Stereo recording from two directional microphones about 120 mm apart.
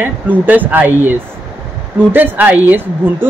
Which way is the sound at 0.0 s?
15° right (ahead or behind).